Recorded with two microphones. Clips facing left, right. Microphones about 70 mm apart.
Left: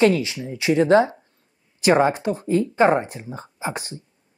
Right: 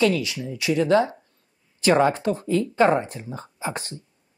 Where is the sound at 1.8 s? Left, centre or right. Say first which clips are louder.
Left 1 dB; left.